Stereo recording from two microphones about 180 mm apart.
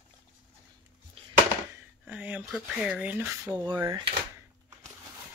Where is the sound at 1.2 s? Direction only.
30° right (ahead or behind).